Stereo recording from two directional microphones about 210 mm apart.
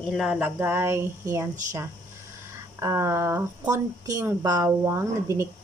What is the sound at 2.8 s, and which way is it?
Speech, 15° right (ahead or behind).